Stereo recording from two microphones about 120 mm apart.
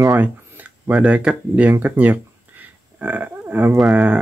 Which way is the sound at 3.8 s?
5° right (ahead or behind).